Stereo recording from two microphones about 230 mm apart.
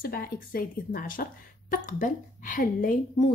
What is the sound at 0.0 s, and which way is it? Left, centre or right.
A woman's voice, left.